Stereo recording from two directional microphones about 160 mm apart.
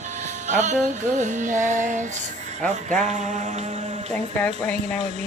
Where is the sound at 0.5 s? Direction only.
50° right (ahead or behind).